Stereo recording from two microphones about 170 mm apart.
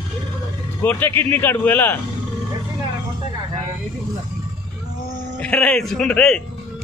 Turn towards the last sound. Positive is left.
turn(degrees=5)  # may be behind; listen again after turning